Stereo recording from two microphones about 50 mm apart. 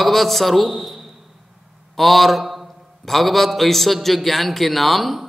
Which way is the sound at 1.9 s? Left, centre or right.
Centre.